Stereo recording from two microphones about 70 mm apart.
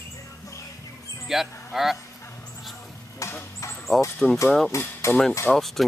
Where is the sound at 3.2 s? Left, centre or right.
Left.